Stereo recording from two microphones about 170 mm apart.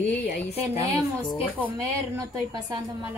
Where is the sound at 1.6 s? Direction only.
15° right (ahead or behind).